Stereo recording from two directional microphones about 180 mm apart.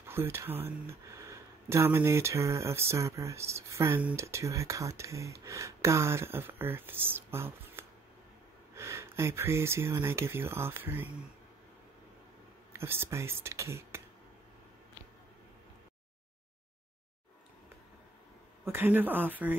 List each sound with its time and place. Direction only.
0.0 s speech: 15° right (ahead or behind)
12.7 s speech: 15° right (ahead or behind)
18.7 s speech: 10° right (ahead or behind)